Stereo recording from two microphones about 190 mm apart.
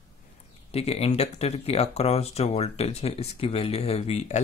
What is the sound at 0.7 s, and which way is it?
Speech, 30° left (ahead or behind).